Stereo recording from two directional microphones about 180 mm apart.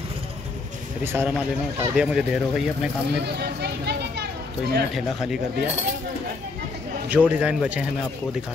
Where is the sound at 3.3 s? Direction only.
65° right (ahead or behind).